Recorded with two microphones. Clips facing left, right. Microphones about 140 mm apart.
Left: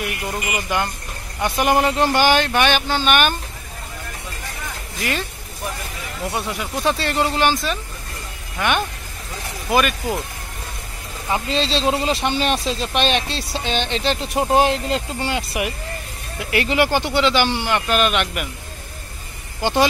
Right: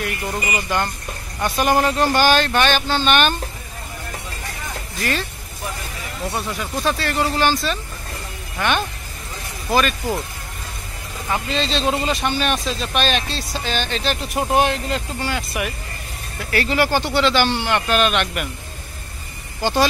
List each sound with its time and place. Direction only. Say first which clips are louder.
0.3 s speech: right 1 dB; 5° left (ahead or behind)
6.3 s speech: even; 15° left (ahead or behind)
11.2 s speech: left 1 dB; 25° left (ahead or behind); by 18.5 s 5° left (ahead or behind)
19.6 s speech: left 1 dB; 15° left (ahead or behind)